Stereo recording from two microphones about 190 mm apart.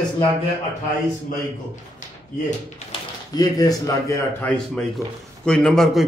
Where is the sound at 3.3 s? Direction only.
20° left (ahead or behind).